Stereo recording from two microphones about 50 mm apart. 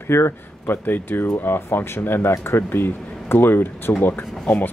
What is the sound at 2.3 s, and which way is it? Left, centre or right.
Speech, left.